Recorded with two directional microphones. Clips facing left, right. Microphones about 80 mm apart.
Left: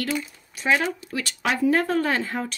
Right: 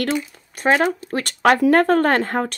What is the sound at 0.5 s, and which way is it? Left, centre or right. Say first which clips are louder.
Speech: right 5 dB; right.